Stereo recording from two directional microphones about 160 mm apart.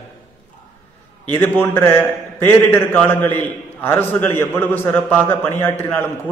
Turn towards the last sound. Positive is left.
turn(degrees=15)  # may be behind; listen again after turning